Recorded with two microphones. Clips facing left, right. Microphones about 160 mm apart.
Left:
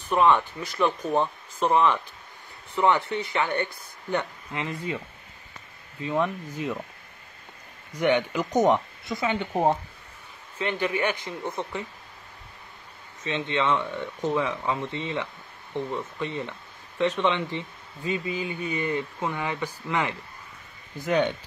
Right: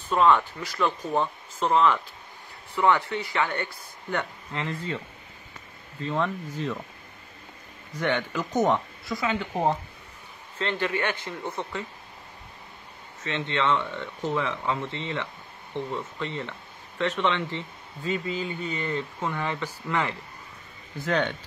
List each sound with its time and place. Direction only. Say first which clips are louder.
0.1 s speech: even; 20° left (ahead or behind)
8.0 s speech: left 4 dB; 15° left (ahead or behind)
13.2 s speech: left 1 dB; 15° left (ahead or behind)